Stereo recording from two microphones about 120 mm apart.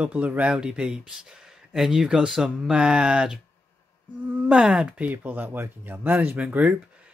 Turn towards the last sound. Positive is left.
turn(degrees=-10)  # may be behind; listen again after turning